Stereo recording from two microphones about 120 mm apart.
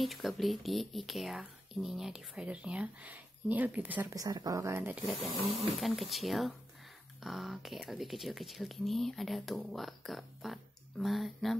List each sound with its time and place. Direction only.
0.0 s speech: centre (ahead or behind)
4.1 s speech: 30° right (ahead or behind)
5.0 s speech: centre (ahead or behind)